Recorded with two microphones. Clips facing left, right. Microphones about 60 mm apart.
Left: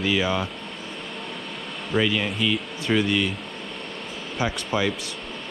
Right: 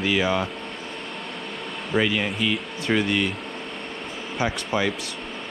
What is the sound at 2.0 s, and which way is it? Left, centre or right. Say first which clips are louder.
Speech: even; right.